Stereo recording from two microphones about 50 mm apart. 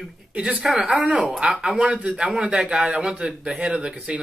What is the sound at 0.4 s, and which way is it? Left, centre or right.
Speech, centre.